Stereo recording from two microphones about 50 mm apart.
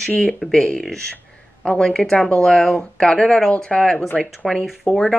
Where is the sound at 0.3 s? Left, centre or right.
Centre.